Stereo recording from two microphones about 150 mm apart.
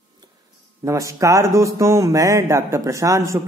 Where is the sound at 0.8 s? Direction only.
20° right (ahead or behind).